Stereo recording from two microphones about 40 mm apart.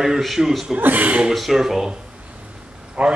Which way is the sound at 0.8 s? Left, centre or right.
Right.